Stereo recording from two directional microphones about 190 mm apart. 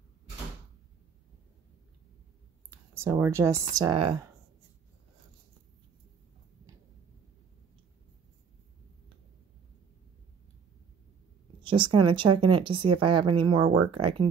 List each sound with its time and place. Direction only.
2.7 s speech: 15° right (ahead or behind)
11.6 s speech: 25° right (ahead or behind)